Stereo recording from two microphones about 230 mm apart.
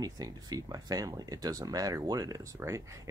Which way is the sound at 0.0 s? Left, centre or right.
Centre.